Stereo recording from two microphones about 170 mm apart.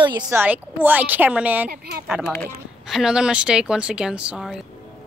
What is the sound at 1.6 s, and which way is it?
Speech, 65° right (ahead or behind).